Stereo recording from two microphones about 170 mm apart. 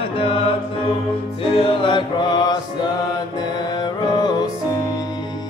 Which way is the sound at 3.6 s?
25° left (ahead or behind).